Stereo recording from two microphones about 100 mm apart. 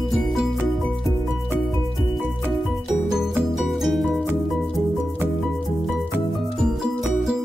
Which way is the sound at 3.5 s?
Centre (ahead or behind).